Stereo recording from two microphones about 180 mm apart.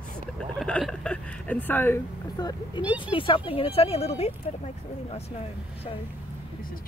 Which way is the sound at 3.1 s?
30° left (ahead or behind).